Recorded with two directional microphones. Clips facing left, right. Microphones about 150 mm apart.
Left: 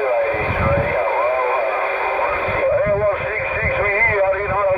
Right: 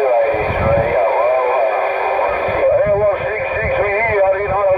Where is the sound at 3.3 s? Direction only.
40° right (ahead or behind).